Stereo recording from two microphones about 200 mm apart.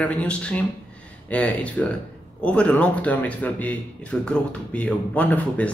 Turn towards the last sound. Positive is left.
turn(degrees=5)  # may be behind; listen again after turning